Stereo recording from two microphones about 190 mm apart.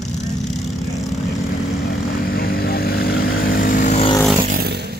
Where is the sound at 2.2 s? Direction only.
50° left (ahead or behind).